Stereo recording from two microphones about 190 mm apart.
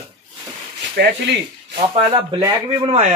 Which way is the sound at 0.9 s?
60° right (ahead or behind).